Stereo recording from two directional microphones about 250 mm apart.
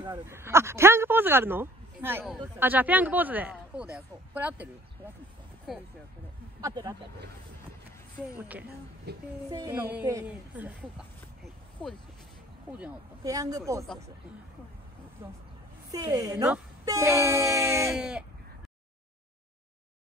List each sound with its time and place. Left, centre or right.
0.0 s speech: centre
6.6 s speech: centre
9.1 s a woman's voice: right
9.5 s speech: centre
15.2 s speech: centre